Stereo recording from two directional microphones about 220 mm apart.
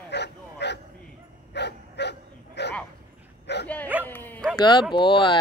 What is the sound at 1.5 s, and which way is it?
Dog, 50° left (ahead or behind).